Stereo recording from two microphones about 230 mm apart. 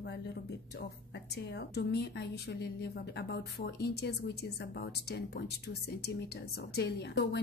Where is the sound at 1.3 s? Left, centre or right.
Left.